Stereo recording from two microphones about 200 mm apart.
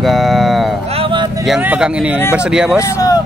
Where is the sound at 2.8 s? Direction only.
15° left (ahead or behind).